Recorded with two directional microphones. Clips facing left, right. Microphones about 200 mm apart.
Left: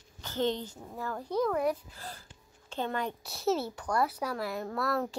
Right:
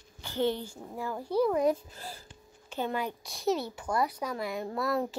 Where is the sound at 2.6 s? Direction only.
10° right (ahead or behind).